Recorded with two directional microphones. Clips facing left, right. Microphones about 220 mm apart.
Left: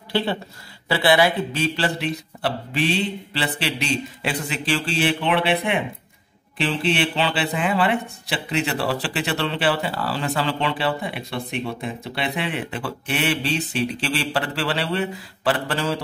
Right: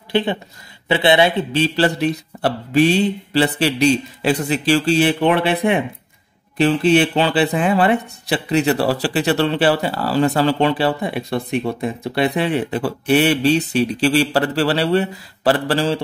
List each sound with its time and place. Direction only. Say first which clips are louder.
0.1 s speech: right 4 dB; 20° right (ahead or behind)
2.0 s speech: right 7 dB; 45° right (ahead or behind)